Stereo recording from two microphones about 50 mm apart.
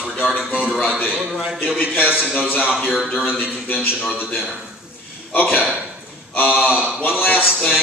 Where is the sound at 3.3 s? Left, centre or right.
Right.